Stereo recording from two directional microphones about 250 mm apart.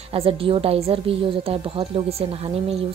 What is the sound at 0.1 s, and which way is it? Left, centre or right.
Speech, right.